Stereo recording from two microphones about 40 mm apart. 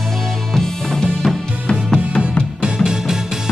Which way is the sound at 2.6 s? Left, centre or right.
Centre.